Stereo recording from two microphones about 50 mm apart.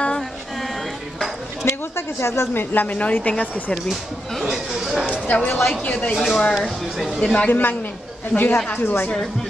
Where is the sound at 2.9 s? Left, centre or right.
Left.